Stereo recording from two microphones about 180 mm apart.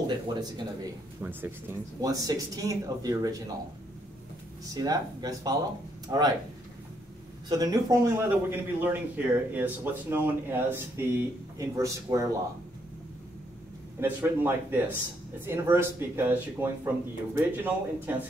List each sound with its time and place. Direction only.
0.0 s speech: 25° right (ahead or behind)
1.2 s a man's voice: 10° right (ahead or behind)
4.6 s speech: 20° right (ahead or behind)
7.4 s a man's voice: 20° right (ahead or behind)
13.9 s a man's voice: 10° right (ahead or behind)